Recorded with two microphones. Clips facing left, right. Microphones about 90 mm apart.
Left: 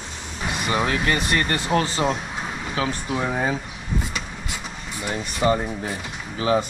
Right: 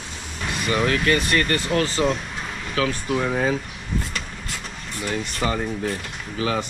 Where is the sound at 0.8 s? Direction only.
25° left (ahead or behind).